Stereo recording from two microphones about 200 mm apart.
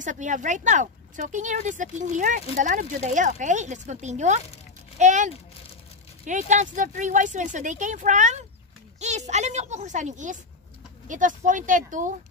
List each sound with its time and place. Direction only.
0.0 s a child's voice: 40° right (ahead or behind)